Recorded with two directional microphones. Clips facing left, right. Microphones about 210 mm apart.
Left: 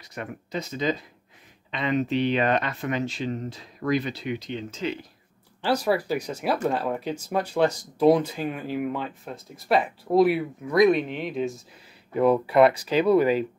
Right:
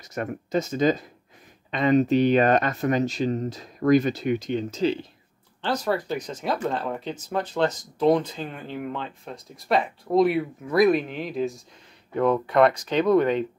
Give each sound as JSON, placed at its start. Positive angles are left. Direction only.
{"t": 0.0, "sound": "speech", "side_deg": -45}
{"t": 5.6, "sound": "speech", "side_deg": 10}